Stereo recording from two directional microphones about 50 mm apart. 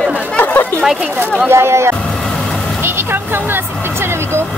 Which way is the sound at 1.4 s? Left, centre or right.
Right.